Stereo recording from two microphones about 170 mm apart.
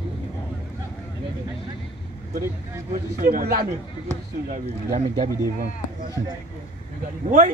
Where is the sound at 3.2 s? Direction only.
60° right (ahead or behind).